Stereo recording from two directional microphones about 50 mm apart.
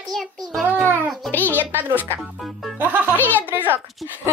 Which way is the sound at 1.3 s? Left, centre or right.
Left.